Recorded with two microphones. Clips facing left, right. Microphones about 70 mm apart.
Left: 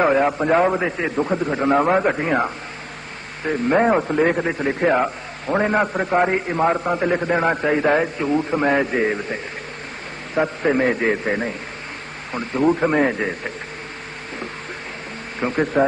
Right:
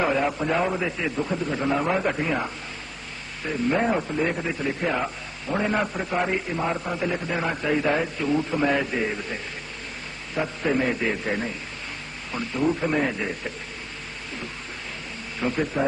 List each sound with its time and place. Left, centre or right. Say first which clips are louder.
0.0 s a man's voice: left 6 dB; left
1.7 s a man's voice: left 8 dB; left
3.6 s a man's voice: left 6 dB; left
10.3 s a man's voice: left 5 dB; left
15.4 s a man's voice: left 5 dB; left